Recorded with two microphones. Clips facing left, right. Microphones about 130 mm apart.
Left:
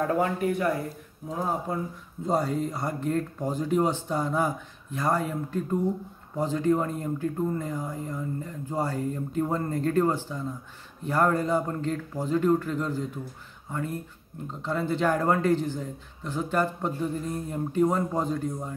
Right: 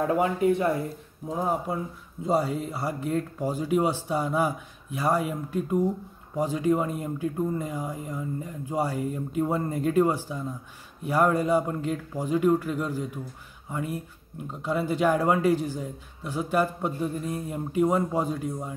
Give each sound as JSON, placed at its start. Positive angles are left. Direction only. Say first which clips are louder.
{"t": 0.1, "sound": "speech", "louder": "right 3 dB", "side_deg": -20}
{"t": 2.2, "sound": "a man's voice", "louder": "right 1 dB", "side_deg": -5}